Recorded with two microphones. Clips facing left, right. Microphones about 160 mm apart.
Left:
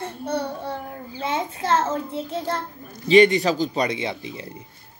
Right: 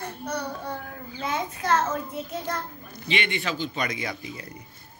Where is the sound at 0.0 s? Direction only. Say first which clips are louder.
Left 5 dB; 25° left (ahead or behind).